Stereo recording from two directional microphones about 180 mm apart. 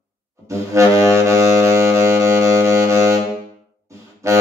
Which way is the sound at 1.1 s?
15° right (ahead or behind).